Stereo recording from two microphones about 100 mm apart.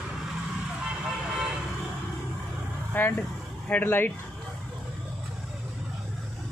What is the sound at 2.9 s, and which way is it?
Speech, 20° left (ahead or behind).